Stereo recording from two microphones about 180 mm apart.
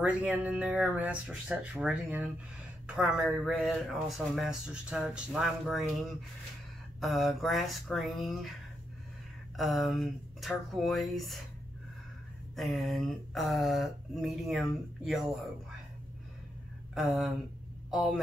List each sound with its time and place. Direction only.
0.0 s speech: 10° right (ahead or behind)
9.6 s speech: centre (ahead or behind)
12.5 s speech: centre (ahead or behind)
16.9 s speech: centre (ahead or behind)